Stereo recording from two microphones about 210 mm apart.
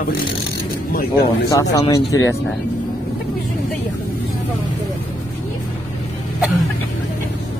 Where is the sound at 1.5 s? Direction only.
15° left (ahead or behind).